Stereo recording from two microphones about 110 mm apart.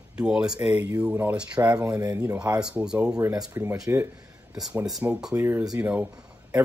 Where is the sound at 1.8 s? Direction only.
35° right (ahead or behind).